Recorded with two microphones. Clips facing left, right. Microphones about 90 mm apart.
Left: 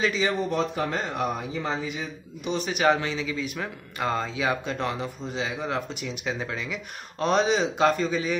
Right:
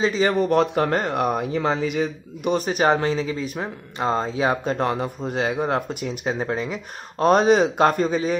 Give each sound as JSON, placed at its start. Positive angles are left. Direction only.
{"t": 0.2, "sound": "speech", "side_deg": -60}